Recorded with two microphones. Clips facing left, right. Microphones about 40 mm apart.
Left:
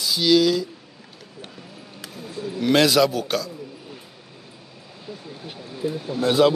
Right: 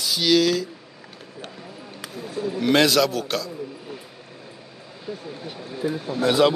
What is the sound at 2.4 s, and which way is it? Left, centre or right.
Speech, right.